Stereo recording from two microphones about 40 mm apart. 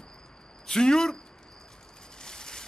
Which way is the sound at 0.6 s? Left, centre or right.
Centre.